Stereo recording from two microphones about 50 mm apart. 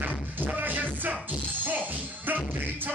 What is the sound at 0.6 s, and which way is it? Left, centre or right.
Music, right.